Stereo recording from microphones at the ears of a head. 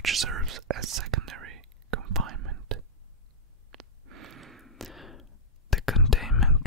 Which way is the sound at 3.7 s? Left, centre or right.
Right.